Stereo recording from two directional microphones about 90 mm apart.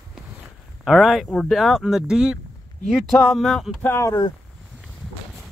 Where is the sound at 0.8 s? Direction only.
Centre (ahead or behind).